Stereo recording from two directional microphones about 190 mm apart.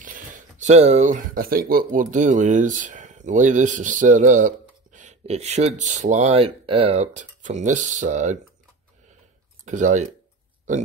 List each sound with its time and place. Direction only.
0.0 s speech: 45° right (ahead or behind)
9.7 s speech: 40° right (ahead or behind)